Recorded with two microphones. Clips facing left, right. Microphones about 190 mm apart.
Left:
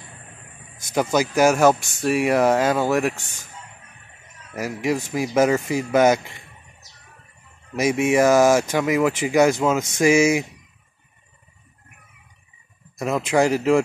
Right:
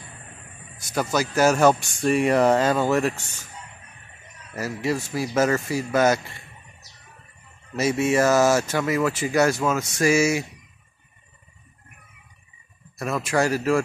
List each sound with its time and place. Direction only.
0.7 s speech: 15° left (ahead or behind)
4.6 s speech: 15° left (ahead or behind)
7.7 s speech: 15° left (ahead or behind)
12.9 s speech: 20° left (ahead or behind)